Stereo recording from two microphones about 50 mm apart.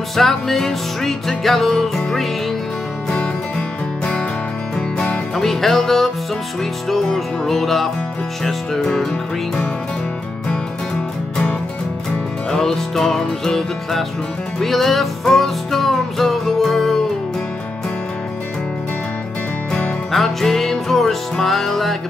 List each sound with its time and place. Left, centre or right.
0.1 s music: centre
3.1 s music: left
5.3 s music: centre
12.4 s music: centre
20.1 s music: centre